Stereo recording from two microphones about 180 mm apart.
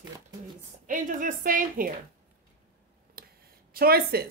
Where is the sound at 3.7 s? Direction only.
55° right (ahead or behind).